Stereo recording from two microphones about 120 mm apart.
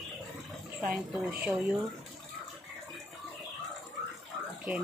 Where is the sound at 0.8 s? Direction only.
10° right (ahead or behind).